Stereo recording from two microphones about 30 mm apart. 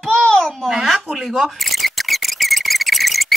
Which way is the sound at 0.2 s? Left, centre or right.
Left.